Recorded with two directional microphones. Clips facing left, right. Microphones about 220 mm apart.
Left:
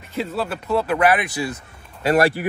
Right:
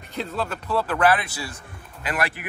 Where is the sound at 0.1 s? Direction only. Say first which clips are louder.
Left 3 dB; 5° left (ahead or behind).